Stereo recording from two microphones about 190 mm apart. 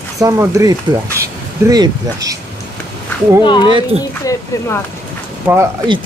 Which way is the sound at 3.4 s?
25° left (ahead or behind).